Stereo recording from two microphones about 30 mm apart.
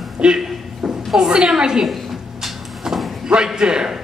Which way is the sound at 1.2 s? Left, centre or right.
Right.